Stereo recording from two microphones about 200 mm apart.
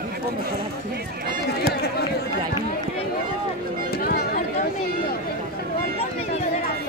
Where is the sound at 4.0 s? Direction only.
45° left (ahead or behind).